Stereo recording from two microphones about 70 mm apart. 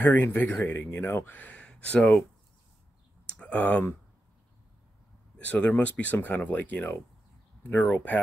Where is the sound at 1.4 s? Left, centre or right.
Centre.